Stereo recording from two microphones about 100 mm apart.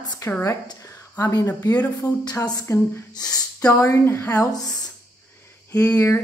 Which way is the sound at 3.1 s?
40° left (ahead or behind).